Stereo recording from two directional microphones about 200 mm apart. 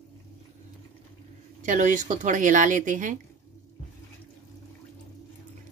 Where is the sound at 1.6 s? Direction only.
40° right (ahead or behind).